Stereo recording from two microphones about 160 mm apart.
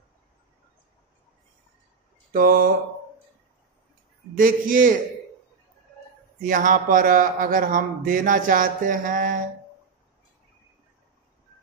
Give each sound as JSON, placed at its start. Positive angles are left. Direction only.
{"t": 2.3, "sound": "a man's voice", "side_deg": -60}
{"t": 4.4, "sound": "a man's voice", "side_deg": -55}
{"t": 6.4, "sound": "a man's voice", "side_deg": -55}